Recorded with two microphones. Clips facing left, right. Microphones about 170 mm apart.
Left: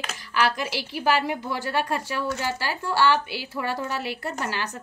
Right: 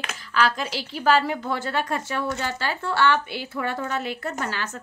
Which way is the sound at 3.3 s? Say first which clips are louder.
Right 1 dB; 55° right (ahead or behind).